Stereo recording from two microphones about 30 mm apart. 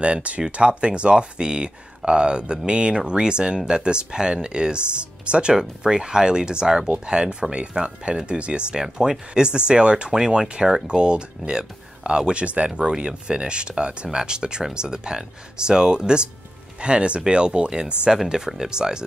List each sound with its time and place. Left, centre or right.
0.0 s speech: right
8.8 s speech: right
10.1 s speech: right